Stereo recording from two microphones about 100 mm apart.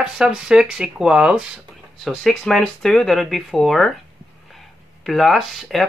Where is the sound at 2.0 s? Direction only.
Centre (ahead or behind).